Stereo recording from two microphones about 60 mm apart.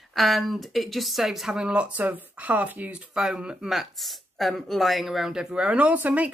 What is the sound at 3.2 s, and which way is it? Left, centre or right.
Speech, centre.